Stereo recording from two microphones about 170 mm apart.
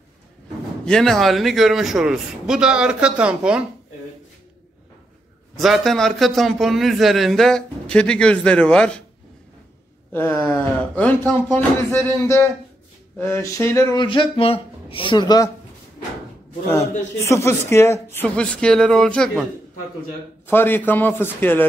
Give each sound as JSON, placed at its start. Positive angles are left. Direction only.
{"t": 0.8, "sound": "a man's voice", "side_deg": 5}
{"t": 5.6, "sound": "a man's voice", "side_deg": 0}
{"t": 10.1, "sound": "speech", "side_deg": 15}
{"t": 14.0, "sound": "speech", "side_deg": 30}
{"t": 17.2, "sound": "speech", "side_deg": 15}
{"t": 20.4, "sound": "speech", "side_deg": 10}